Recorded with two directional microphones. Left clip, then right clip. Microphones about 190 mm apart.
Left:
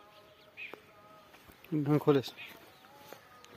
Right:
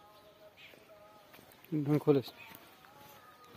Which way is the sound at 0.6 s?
80° right.